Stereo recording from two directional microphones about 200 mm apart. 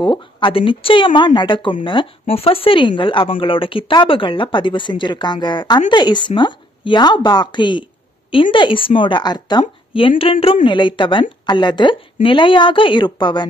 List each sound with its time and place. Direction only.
0.0 s speech: 25° left (ahead or behind)